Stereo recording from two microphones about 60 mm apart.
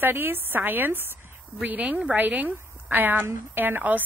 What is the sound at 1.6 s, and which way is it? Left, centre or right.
Speech, right.